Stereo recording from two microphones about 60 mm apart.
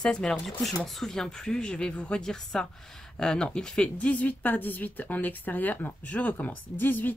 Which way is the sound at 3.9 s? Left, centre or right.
Left.